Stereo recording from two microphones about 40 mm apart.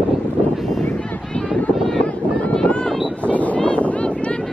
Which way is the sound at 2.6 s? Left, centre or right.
Left.